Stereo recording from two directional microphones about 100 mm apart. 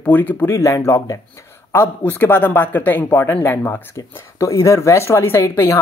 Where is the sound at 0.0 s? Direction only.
15° left (ahead or behind).